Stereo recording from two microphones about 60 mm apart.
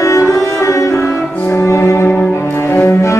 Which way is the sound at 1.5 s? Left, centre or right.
Left.